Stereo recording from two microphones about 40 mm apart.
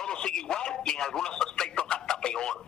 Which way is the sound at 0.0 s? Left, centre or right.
Centre.